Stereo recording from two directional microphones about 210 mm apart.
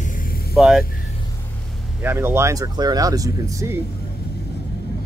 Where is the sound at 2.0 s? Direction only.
10° right (ahead or behind).